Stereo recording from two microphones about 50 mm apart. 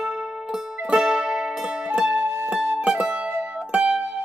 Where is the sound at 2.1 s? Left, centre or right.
Right.